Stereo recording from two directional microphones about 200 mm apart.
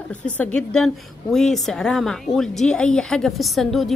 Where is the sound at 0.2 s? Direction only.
5° left (ahead or behind).